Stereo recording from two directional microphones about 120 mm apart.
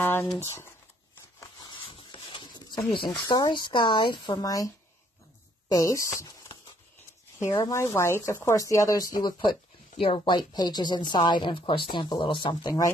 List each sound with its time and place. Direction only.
0.0 s a sound: 15° left (ahead or behind)
0.4 s speech: 25° left (ahead or behind)
1.7 s a sound: 50° left (ahead or behind)
3.3 s speech: 35° left (ahead or behind)
4.4 s speech: 30° left (ahead or behind)
5.7 s speech: 25° left (ahead or behind)
9.4 s speech: 45° left (ahead or behind)